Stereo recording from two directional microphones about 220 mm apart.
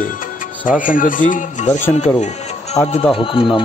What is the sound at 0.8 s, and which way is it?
Speech, 40° left (ahead or behind).